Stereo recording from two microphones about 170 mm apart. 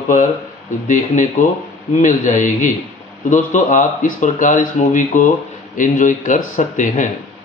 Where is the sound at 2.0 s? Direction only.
45° left (ahead or behind).